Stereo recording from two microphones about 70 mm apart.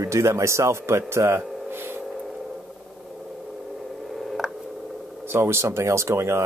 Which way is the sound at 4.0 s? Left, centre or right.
Centre.